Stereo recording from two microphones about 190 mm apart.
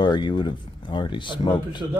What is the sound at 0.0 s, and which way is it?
Speech, 25° left (ahead or behind).